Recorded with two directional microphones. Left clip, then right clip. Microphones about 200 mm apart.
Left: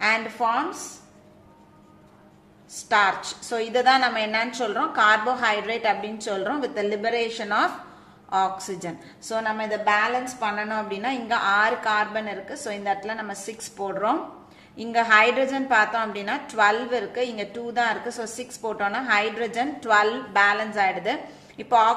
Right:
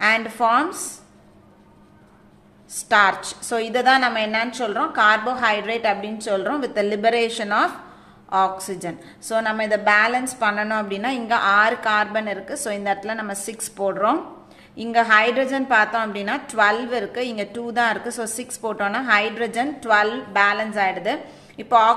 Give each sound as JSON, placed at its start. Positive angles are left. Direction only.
{"t": 0.4, "sound": "a woman's voice", "side_deg": -30}
{"t": 2.9, "sound": "a woman's voice", "side_deg": -20}